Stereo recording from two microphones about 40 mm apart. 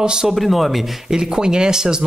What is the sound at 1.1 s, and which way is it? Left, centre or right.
Speech, centre.